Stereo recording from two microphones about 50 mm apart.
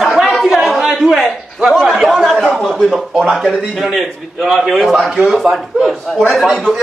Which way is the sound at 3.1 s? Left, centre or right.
Centre.